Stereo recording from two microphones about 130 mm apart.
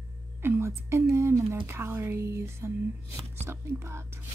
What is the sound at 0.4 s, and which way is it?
Speech, 20° right (ahead or behind).